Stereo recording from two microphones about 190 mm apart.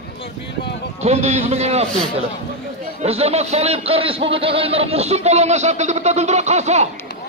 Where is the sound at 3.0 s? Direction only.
35° right (ahead or behind).